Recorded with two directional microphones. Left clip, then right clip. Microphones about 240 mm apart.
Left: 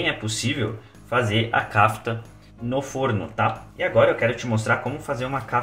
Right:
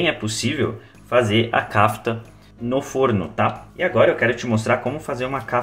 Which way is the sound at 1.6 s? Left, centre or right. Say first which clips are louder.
Right 1 dB; right.